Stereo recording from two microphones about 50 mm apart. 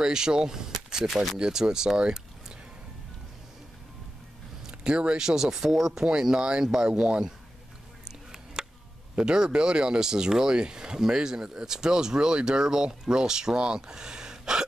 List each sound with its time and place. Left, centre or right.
0.0 s speech: centre
1.1 s speech: centre
1.4 s speech: centre
4.6 s speech: centre
8.6 s a sound: centre
9.2 s speech: centre